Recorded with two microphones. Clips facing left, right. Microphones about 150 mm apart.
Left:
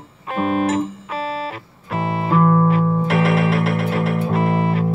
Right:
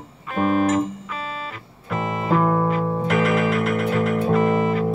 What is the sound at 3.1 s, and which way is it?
Music, 30° left (ahead or behind).